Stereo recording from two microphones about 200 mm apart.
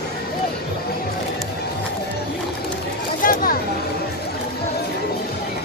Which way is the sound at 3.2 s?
45° left (ahead or behind).